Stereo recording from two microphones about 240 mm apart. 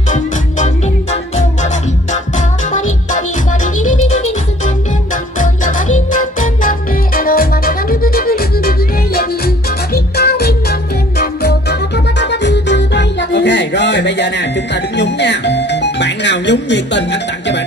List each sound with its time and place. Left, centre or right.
2.7 s music: left
5.4 s music: left
12.2 s music: left
15.0 s speech: left